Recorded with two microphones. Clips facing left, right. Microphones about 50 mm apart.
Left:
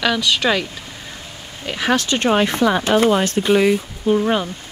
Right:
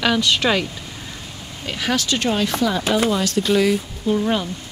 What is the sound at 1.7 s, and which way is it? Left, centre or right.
Speech, left.